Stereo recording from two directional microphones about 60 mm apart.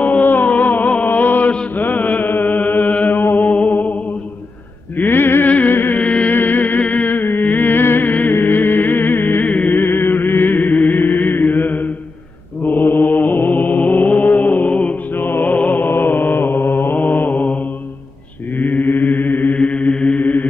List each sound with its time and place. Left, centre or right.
0.0 s music: left
1.8 s mantra: left
4.9 s a sound: left
5.5 s a sound: left
5.8 s music: left
9.7 s music: left
12.6 s mantra: left
15.1 s mantra: left
18.6 s chant: left